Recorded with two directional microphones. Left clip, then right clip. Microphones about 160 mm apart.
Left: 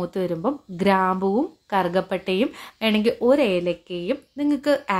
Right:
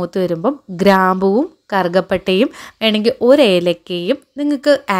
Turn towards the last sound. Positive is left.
turn(degrees=-40)  # may be behind; listen again after turning